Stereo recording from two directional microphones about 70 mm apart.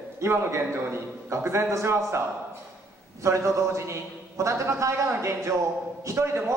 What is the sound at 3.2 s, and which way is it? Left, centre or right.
A man's voice, right.